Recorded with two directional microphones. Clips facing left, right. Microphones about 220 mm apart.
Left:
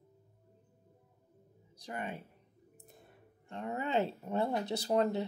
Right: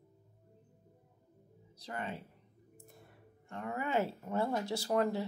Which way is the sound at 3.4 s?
20° left (ahead or behind).